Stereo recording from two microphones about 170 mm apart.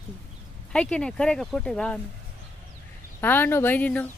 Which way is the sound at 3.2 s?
10° left (ahead or behind).